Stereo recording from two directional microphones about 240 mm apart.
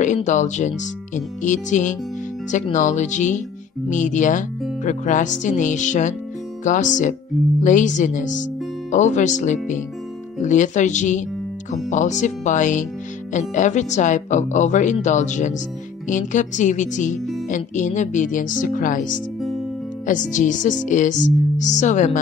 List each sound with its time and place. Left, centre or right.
0.0 s speech: left